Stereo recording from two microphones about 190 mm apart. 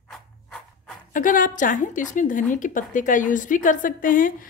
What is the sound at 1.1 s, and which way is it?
A woman's voice, 45° left (ahead or behind).